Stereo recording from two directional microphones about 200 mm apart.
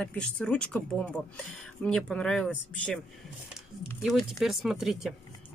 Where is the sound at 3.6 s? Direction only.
Centre (ahead or behind).